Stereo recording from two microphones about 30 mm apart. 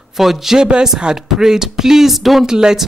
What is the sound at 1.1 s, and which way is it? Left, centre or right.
Speech, centre.